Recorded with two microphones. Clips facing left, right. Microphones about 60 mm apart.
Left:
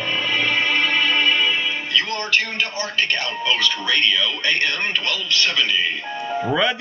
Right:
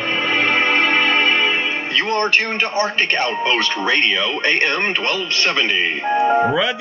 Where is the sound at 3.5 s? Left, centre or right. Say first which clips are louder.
Left 1 dB; right.